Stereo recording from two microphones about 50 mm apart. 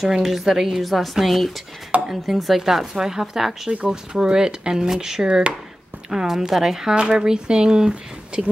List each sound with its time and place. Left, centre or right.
0.1 s speech: centre